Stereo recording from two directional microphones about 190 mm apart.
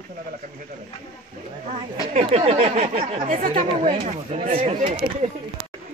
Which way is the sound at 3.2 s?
45° right (ahead or behind).